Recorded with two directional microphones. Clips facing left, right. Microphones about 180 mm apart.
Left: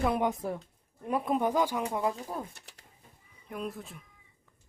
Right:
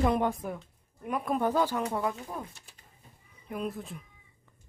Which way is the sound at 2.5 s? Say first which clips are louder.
Left 2 dB; 75° left (ahead or behind).